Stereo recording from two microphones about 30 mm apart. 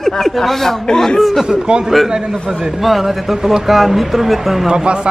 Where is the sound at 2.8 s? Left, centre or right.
Centre.